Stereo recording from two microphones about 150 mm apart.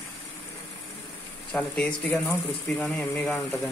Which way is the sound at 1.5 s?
10° left (ahead or behind).